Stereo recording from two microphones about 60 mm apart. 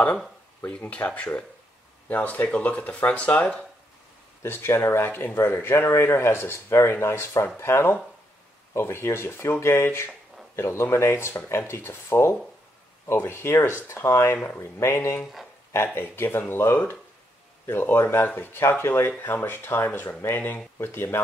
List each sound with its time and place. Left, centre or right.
0.7 s speech: left
4.4 s speech: left